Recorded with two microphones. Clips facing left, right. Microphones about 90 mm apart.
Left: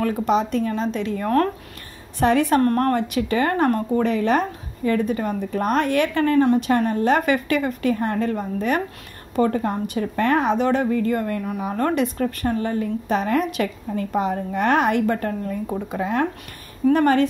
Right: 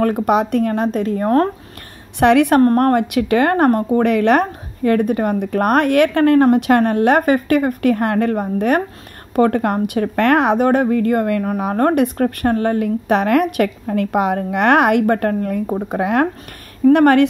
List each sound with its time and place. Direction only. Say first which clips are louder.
0.0 s a woman's voice: right 5 dB; 55° right (ahead or behind)
1.0 s speech: right 4 dB; 40° right (ahead or behind)
2.1 s a woman's voice: right 6 dB; 65° right (ahead or behind)
2.6 s speech: right 6 dB; 35° right (ahead or behind)
2.9 s a woman's voice: right 6 dB; 55° right (ahead or behind)
4.0 s a woman's voice: right 6 dB; 65° right (ahead or behind)
7.2 s a woman's voice: right 6 dB; 45° right (ahead or behind); by 17.3 s 65° right (ahead or behind)